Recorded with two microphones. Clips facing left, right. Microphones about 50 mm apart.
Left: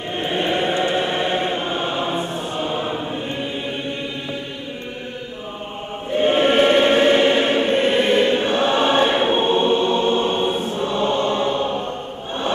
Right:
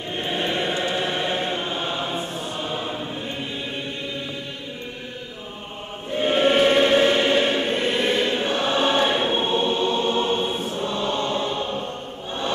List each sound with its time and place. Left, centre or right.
0.3 s chant: left
1.1 s choir: left
6.2 s choir: left